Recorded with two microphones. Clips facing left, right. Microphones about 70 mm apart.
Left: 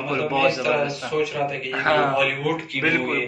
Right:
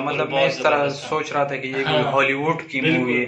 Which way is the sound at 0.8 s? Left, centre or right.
Right.